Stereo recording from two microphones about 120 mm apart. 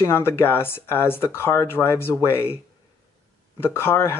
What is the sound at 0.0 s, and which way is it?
Speech, 20° left (ahead or behind).